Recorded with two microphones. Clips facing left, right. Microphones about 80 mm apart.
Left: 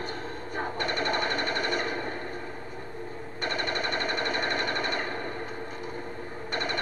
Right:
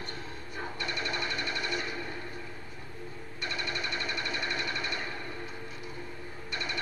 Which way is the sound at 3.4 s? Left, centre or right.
Left.